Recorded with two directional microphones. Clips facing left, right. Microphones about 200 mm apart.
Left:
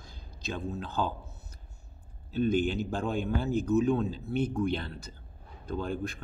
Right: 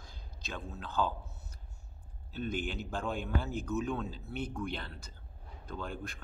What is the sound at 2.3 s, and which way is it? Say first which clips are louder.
A man's voice: left 10 dB; 25° left (ahead or behind).